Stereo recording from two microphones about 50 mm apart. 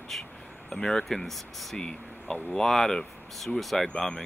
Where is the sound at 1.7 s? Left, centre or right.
Centre.